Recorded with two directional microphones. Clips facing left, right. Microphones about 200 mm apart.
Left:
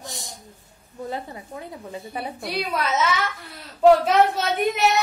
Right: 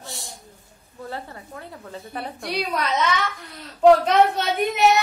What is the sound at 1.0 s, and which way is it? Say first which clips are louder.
A woman's voice: left 3 dB; 15° left (ahead or behind).